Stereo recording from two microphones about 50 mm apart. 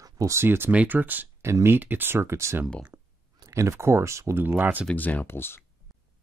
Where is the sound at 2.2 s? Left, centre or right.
Right.